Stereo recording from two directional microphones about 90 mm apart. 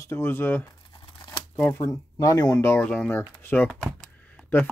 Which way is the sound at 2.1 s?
45° left (ahead or behind).